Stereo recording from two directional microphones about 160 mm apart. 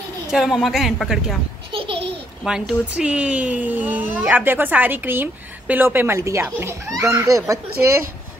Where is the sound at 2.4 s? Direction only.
5° right (ahead or behind).